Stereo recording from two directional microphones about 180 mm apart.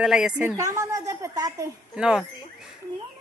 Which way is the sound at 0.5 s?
20° right (ahead or behind).